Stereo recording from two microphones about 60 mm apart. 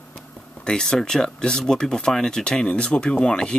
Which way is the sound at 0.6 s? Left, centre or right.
Centre.